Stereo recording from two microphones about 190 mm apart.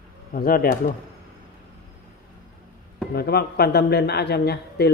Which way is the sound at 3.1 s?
55° left (ahead or behind).